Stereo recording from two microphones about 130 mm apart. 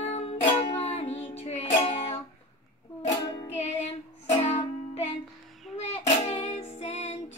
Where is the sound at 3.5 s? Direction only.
60° left (ahead or behind).